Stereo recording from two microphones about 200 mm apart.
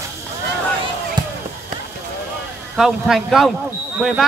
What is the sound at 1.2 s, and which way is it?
Basketball bounce, 20° right (ahead or behind).